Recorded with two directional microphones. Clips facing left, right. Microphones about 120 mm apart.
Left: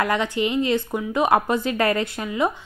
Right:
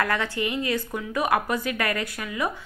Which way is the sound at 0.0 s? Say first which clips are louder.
Left 4 dB; 20° left (ahead or behind).